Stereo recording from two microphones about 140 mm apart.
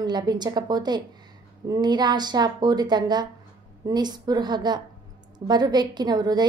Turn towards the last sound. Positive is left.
turn(degrees=-30)  # may be behind; listen again after turning